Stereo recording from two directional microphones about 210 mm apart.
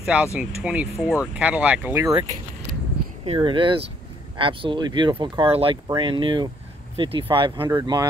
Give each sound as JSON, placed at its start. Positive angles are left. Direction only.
{"t": 0.0, "sound": "speech", "side_deg": -5}
{"t": 3.3, "sound": "speech", "side_deg": -25}